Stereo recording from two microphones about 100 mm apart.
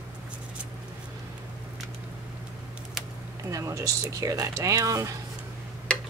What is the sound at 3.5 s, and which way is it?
Speech, 30° right (ahead or behind).